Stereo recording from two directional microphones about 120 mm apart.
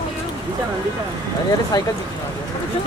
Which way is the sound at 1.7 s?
35° left (ahead or behind).